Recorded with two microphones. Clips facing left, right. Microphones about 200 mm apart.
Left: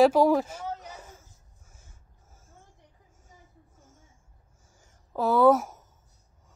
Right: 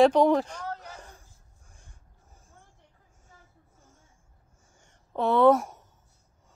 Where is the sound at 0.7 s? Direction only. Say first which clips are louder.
Left 1 dB; 20° left (ahead or behind).